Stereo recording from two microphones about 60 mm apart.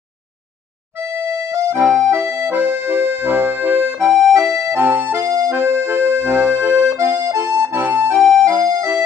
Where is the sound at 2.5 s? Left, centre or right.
Right.